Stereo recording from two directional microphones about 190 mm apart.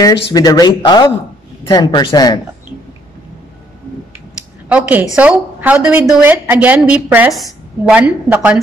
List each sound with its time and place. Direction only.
0.0 s speech: 20° left (ahead or behind)
4.6 s a woman's voice: 10° right (ahead or behind)